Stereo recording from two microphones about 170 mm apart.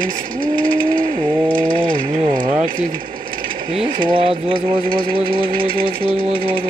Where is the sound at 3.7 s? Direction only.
30° right (ahead or behind).